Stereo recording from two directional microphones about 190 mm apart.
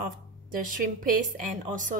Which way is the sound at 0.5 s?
45° right (ahead or behind).